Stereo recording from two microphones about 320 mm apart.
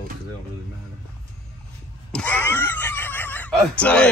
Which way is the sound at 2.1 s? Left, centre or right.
Centre.